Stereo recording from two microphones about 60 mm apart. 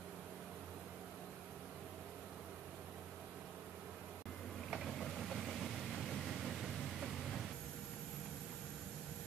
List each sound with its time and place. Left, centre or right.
4.6 s vehicle: centre